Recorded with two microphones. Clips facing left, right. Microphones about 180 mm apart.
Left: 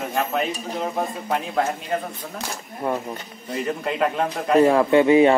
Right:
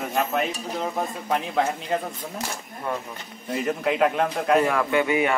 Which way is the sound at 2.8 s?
35° left (ahead or behind).